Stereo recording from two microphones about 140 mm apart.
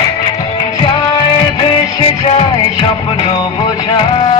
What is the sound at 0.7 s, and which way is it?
Music, 35° left (ahead or behind).